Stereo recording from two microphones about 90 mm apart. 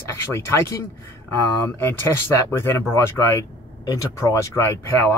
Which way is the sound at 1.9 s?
25° left (ahead or behind).